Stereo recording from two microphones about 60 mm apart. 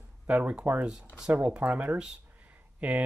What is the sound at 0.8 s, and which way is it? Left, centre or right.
Speech, centre.